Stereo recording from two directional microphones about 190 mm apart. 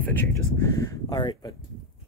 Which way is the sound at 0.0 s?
10° left (ahead or behind).